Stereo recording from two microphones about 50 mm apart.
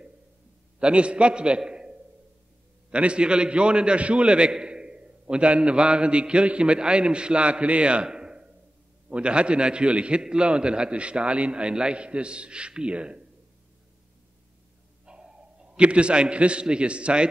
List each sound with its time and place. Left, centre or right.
0.7 s a man's voice: right
15.0 s a man's voice: centre